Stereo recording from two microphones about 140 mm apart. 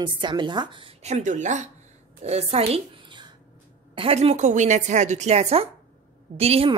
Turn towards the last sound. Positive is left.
turn(degrees=-45)  # may be behind; listen again after turning